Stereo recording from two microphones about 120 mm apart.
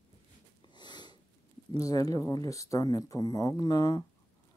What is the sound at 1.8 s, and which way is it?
Speech, 30° left (ahead or behind).